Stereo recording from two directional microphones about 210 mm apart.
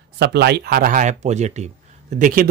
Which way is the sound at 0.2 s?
50° right (ahead or behind).